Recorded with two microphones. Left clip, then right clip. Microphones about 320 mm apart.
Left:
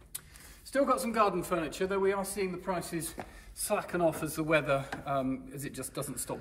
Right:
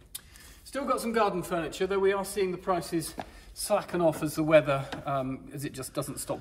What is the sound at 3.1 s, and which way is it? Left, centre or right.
Speech, right.